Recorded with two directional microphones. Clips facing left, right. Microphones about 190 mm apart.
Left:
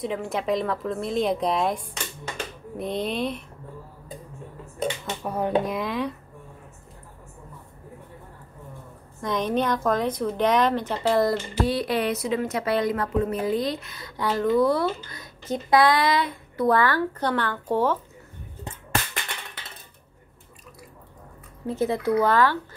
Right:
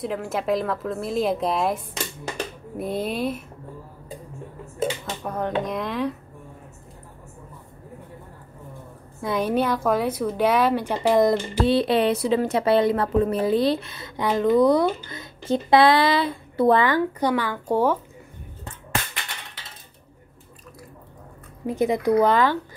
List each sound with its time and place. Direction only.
0.0 s a woman's voice: centre (ahead or behind)
5.2 s a woman's voice: 10° left (ahead or behind)
9.2 s a woman's voice: 5° right (ahead or behind)
21.6 s speech: 15° right (ahead or behind)